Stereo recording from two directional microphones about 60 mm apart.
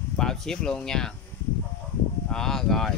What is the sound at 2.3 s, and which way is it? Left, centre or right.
Speech, centre.